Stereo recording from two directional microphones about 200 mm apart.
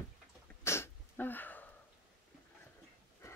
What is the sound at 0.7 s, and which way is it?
Sneeze, 10° left (ahead or behind).